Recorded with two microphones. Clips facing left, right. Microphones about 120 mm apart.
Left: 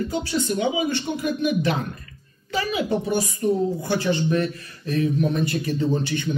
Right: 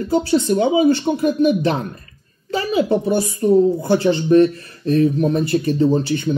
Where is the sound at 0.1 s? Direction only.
35° right (ahead or behind).